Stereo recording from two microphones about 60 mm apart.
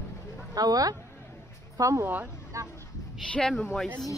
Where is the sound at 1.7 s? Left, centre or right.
Right.